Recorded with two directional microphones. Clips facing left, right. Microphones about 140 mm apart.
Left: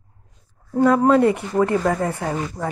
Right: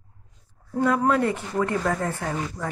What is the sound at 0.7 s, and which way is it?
Speech, 40° left (ahead or behind).